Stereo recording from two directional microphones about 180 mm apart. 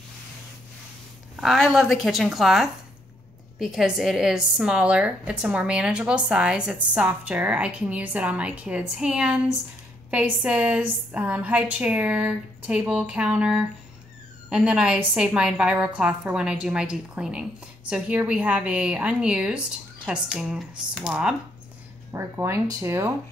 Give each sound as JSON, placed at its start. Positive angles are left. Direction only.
{"t": 1.3, "sound": "a woman's voice", "side_deg": 0}
{"t": 22.1, "sound": "speech", "side_deg": -15}